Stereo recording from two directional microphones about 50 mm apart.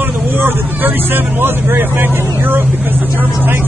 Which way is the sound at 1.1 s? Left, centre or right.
Right.